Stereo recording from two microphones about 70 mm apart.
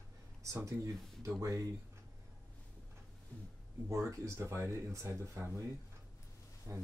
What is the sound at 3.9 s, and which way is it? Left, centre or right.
Speech, right.